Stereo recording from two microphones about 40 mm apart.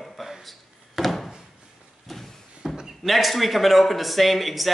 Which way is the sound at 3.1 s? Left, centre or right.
Centre.